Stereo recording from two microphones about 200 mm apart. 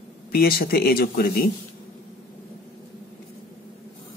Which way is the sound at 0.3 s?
50° left (ahead or behind).